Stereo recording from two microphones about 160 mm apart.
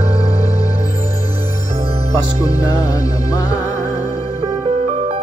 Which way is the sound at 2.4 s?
25° left (ahead or behind).